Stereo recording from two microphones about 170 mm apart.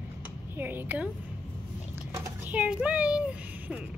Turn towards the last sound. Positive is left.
turn(degrees=-10)  # may be behind; listen again after turning